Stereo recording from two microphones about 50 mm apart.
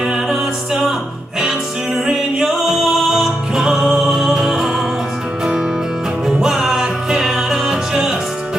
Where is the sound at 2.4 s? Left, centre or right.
Centre.